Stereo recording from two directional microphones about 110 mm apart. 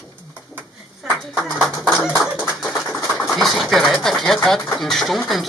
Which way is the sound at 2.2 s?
Centre (ahead or behind).